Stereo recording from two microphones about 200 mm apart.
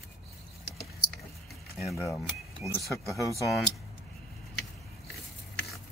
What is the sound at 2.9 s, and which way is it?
Speech, 15° left (ahead or behind).